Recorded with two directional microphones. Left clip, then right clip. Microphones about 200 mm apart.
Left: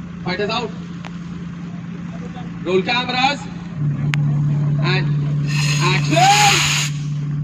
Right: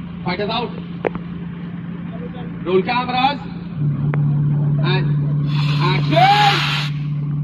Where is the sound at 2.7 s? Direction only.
10° right (ahead or behind).